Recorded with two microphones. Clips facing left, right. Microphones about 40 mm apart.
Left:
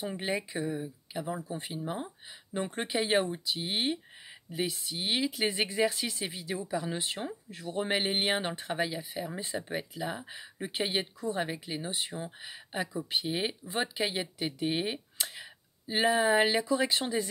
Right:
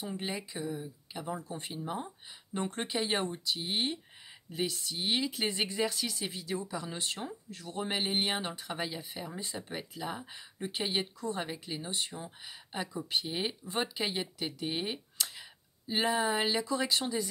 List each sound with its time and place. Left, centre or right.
0.0 s speech: left
0.6 s speech: centre; by 8.7 s left
8.7 s speech: centre
9.3 s speech: left
9.6 s speech: centre; by 17.3 s left